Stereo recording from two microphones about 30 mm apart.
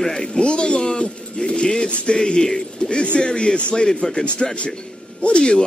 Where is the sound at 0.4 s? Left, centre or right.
Left.